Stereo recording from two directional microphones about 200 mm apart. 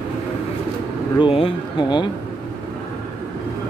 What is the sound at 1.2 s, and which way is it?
Speech, 25° left (ahead or behind).